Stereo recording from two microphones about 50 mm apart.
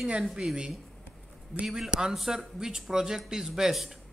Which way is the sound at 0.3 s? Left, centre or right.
Centre.